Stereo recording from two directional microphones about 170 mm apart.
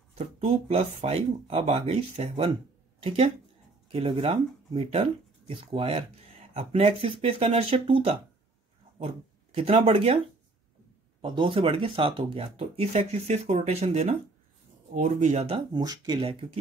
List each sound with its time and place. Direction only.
0.1 s speech: 35° right (ahead or behind)
15.7 s speech: 25° right (ahead or behind)